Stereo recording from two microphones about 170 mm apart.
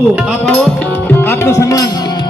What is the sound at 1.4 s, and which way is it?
Music, 20° left (ahead or behind).